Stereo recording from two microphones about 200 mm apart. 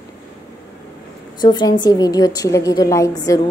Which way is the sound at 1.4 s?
20° left (ahead or behind).